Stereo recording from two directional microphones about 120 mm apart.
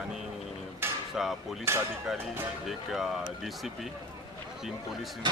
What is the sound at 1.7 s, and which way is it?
Speech, 20° right (ahead or behind).